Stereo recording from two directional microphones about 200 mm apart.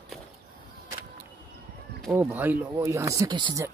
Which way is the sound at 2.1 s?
10° right (ahead or behind).